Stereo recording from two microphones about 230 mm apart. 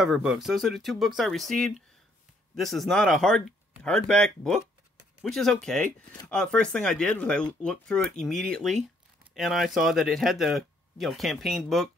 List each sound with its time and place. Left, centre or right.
0.0 s speech: centre